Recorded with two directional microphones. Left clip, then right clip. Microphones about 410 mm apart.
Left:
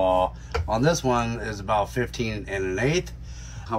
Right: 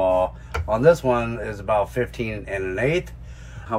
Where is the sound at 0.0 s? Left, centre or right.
Centre.